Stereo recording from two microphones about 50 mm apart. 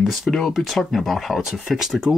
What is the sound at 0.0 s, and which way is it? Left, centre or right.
Speech, centre.